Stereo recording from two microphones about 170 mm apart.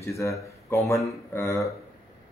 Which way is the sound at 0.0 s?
15° left (ahead or behind).